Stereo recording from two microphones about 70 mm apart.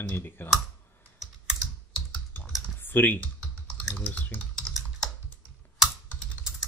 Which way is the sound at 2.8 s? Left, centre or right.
Left.